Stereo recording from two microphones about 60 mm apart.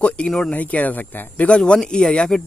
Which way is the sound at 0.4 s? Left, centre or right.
Left.